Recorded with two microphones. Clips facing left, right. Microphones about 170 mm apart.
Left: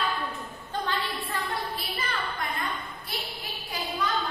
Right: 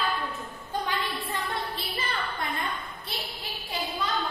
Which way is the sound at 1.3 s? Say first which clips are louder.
Even; 20° right (ahead or behind).